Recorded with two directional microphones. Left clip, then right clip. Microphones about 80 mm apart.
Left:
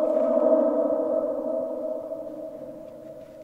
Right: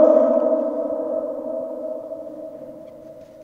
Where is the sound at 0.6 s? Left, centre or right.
Centre.